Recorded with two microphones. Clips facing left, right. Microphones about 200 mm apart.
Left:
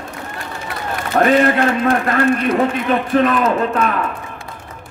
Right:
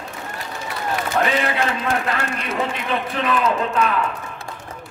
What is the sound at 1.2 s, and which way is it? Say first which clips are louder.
A man's voice: left 9 dB; 50° left (ahead or behind).